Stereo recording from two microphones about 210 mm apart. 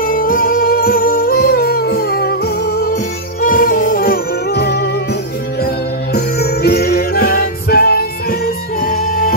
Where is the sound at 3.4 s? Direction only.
40° left (ahead or behind).